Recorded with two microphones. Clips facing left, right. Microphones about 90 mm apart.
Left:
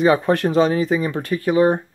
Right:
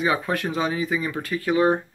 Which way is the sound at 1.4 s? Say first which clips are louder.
Left 3 dB; 25° left (ahead or behind).